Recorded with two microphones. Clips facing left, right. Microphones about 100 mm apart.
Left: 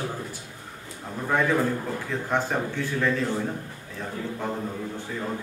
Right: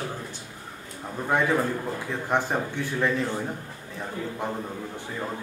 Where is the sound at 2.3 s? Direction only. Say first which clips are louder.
Right 1 dB; 15° right (ahead or behind).